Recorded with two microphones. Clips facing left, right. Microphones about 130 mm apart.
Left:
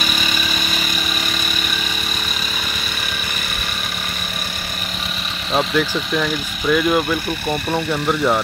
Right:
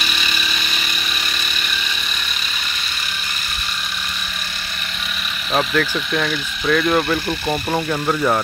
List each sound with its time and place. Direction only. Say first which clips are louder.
0.0 s vehicle: left 3 dB; 45° left (ahead or behind)
5.8 s speech: left 1 dB; 5° left (ahead or behind)